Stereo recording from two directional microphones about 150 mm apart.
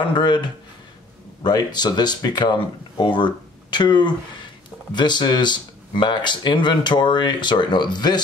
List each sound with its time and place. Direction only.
0.0 s speech: 30° left (ahead or behind)